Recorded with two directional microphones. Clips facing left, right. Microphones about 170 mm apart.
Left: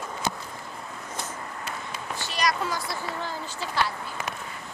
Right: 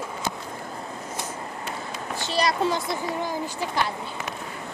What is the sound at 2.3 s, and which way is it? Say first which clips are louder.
Speech: right 4 dB; 30° right (ahead or behind).